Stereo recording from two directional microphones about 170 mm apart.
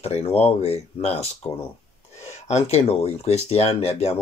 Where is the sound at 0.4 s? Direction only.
35° left (ahead or behind).